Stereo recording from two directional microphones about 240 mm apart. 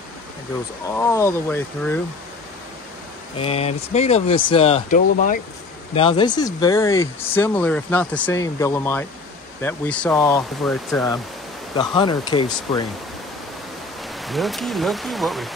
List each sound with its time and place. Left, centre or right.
0.9 s speech: centre
3.3 s speech: left
5.9 s speech: left; by 11.1 s centre
11.7 s speech: centre
14.2 s speech: centre